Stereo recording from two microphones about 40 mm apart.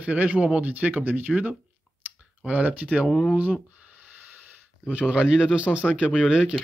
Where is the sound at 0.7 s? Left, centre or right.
Right.